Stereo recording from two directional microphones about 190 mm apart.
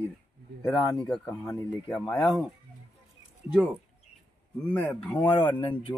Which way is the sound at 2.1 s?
Centre (ahead or behind).